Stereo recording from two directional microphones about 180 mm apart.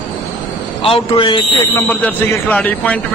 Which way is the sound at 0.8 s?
30° left (ahead or behind).